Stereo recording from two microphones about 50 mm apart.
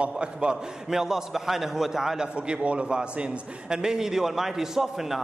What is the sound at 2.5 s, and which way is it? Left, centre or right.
A man's voice, right.